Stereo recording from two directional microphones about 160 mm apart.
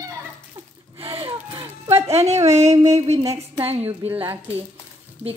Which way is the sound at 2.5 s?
45° right (ahead or behind).